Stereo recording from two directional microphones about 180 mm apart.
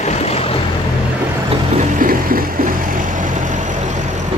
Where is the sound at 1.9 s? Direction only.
50° right (ahead or behind).